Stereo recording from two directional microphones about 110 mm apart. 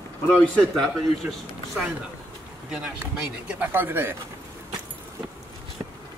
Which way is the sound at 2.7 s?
10° right (ahead or behind).